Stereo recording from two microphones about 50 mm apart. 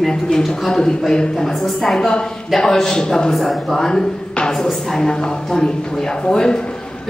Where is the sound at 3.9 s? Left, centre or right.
Centre.